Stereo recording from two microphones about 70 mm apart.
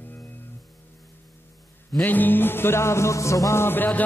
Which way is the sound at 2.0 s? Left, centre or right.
Left.